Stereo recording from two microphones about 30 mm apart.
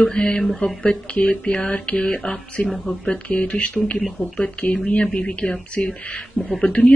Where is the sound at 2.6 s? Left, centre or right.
Left.